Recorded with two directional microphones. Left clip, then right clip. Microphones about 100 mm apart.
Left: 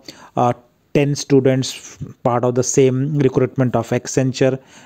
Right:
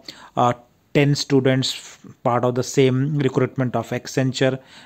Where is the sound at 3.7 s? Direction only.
55° left (ahead or behind); by 4.6 s 35° left (ahead or behind).